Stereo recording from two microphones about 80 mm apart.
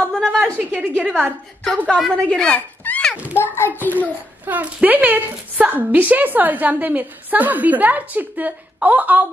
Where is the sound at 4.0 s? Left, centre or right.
Right.